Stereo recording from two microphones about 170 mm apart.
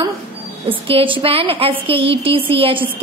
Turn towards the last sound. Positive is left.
turn(degrees=-35)  # may be behind; listen again after turning